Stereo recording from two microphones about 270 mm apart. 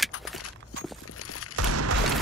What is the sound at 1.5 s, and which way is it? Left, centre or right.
Music, right.